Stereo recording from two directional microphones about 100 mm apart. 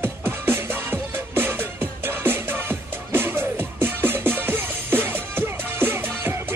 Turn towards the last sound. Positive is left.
turn(degrees=-20)  # may be behind; listen again after turning